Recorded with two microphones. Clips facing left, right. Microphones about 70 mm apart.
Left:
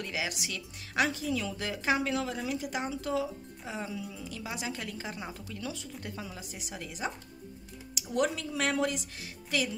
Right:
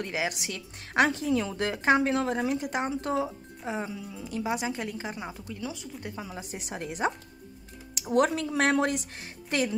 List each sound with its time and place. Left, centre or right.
0.0 s speech: right
3.7 s a woman's voice: right
6.3 s speech: right
7.9 s speech: right